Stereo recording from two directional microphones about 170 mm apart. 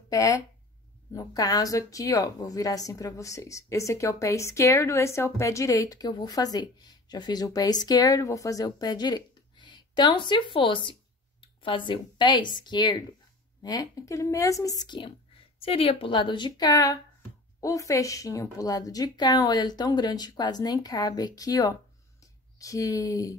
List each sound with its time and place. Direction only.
0.1 s speech: 20° left (ahead or behind)